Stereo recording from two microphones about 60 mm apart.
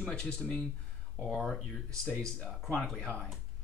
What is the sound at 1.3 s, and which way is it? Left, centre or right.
Speech, centre.